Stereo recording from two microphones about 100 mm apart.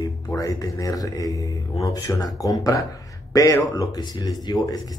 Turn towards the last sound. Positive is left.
turn(degrees=45)  # may be behind; listen again after turning